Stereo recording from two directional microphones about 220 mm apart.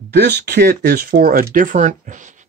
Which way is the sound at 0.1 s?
45° right (ahead or behind).